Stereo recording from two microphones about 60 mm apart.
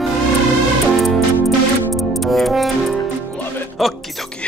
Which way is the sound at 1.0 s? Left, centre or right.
Centre.